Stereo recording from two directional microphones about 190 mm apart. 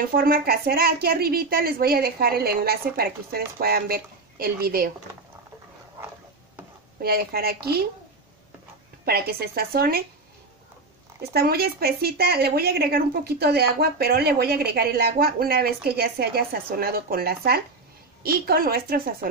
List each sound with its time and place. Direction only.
0.1 s a woman's voice: 50° right (ahead or behind)
7.0 s a woman's voice: 55° right (ahead or behind)
9.0 s a woman's voice: 55° right (ahead or behind)
11.3 s a woman's voice: 55° right (ahead or behind)